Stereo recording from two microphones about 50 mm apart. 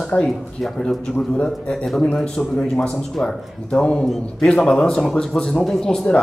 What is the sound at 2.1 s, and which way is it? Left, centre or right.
Speech, centre.